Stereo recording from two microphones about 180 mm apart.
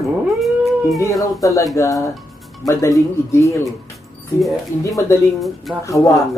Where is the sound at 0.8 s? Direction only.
15° left (ahead or behind).